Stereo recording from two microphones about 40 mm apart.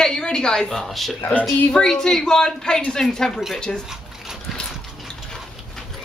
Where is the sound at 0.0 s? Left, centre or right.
Centre.